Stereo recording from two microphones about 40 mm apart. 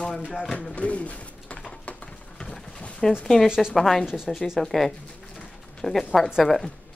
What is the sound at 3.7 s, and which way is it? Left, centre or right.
A woman's voice, centre.